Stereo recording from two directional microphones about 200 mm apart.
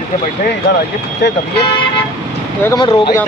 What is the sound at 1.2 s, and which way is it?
Speech, 60° left (ahead or behind).